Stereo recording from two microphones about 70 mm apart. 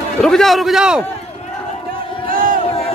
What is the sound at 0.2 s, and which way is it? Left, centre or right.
Speech, centre.